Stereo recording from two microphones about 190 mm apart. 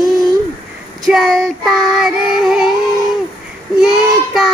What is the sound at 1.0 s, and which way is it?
Child singing, centre (ahead or behind).